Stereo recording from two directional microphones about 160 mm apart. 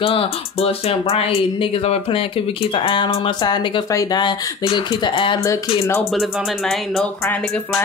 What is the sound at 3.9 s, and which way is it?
Speech, 20° left (ahead or behind).